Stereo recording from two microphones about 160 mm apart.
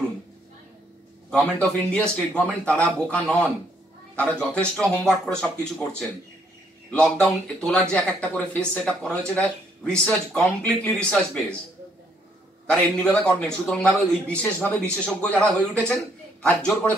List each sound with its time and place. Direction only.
1.4 s a man's voice: 5° left (ahead or behind)
4.4 s a man's voice: 5° left (ahead or behind)
12.6 s a man's voice: 5° left (ahead or behind)